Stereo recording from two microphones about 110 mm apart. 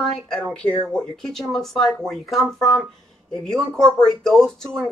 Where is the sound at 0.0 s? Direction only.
5° left (ahead or behind).